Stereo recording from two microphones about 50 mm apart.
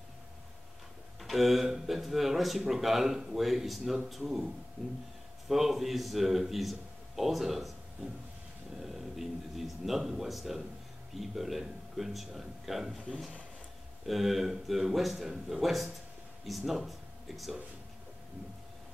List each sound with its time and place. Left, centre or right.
1.2 s speech: centre
5.5 s speech: centre
8.0 s train: right
8.8 s a sound: centre
11.1 s speech: centre
14.0 s speech: centre